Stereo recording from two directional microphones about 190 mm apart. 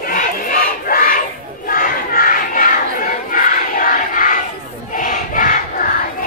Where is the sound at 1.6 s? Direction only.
50° left (ahead or behind).